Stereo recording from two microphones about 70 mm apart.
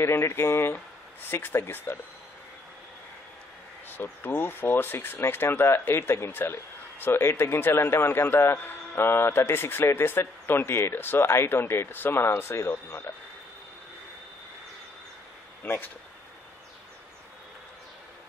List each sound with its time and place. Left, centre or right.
0.0 s speech: left
3.9 s speech: left
15.6 s speech: left